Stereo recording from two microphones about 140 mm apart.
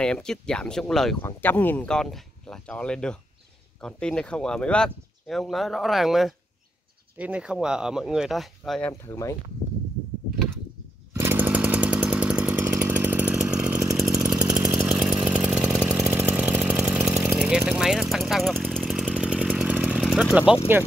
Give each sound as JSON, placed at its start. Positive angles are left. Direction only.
{"t": 0.0, "sound": "speech", "side_deg": 5}
{"t": 1.2, "sound": "speech", "side_deg": 15}
{"t": 9.0, "sound": "speech", "side_deg": 20}
{"t": 11.1, "sound": "chainsaw", "side_deg": -15}